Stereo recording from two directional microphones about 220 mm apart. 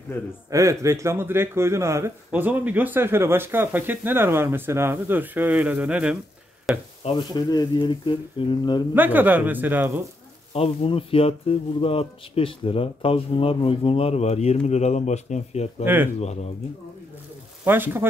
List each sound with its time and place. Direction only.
0.5 s a man's voice: 15° right (ahead or behind)
7.1 s speech: 20° left (ahead or behind)
8.9 s a man's voice: 10° right (ahead or behind)
10.5 s speech: 25° left (ahead or behind)
15.8 s a man's voice: 10° right (ahead or behind)
16.2 s speech: 30° left (ahead or behind)
17.6 s a man's voice: 10° right (ahead or behind)